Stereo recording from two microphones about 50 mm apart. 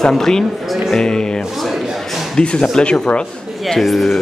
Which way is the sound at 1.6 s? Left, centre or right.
Centre.